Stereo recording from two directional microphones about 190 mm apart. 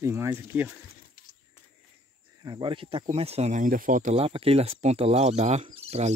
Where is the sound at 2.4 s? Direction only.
25° right (ahead or behind).